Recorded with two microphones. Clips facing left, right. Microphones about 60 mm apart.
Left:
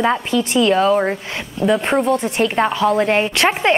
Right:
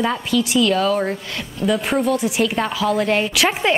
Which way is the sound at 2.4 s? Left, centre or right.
Centre.